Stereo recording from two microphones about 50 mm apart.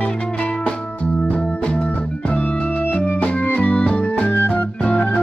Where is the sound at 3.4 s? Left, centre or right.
Left.